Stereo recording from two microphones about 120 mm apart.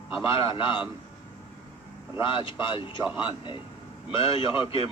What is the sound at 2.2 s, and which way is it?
Speech, 45° left (ahead or behind).